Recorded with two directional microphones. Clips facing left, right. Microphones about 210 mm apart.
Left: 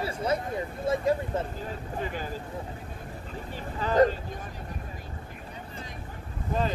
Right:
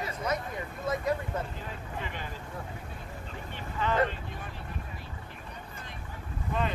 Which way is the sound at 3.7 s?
40° left (ahead or behind).